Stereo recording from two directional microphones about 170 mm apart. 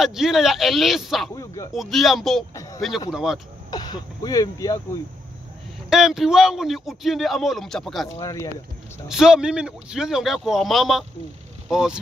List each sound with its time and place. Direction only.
0.0 s speech: centre (ahead or behind)
1.3 s speech: 20° left (ahead or behind)
1.7 s speech: centre (ahead or behind)
2.5 s a sound: 20° left (ahead or behind)
3.1 s speech: 5° right (ahead or behind)
3.7 s speech: 25° left (ahead or behind)
5.9 s speech: centre (ahead or behind)
8.2 s speech: 20° left (ahead or behind)
9.1 s speech: 5° right (ahead or behind)